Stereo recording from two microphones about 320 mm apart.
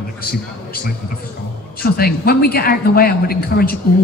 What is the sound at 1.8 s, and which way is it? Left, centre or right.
A man's voice, left.